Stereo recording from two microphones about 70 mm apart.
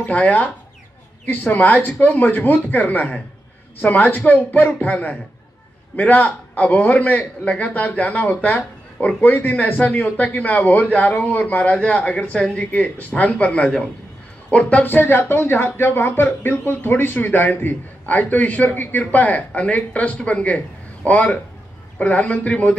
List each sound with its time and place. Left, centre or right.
0.0 s a man's voice: left